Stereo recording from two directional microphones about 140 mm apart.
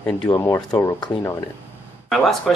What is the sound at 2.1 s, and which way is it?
Speech, centre (ahead or behind).